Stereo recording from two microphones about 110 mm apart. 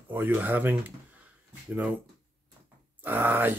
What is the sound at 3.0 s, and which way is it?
Speech, 15° right (ahead or behind).